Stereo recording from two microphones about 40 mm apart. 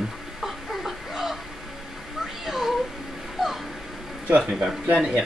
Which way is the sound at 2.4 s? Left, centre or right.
Centre.